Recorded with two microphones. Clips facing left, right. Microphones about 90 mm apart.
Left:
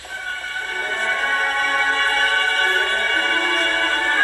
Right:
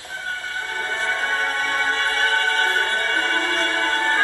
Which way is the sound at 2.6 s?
55° left (ahead or behind).